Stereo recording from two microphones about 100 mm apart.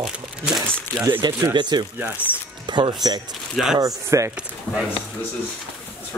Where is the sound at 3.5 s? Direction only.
Centre (ahead or behind).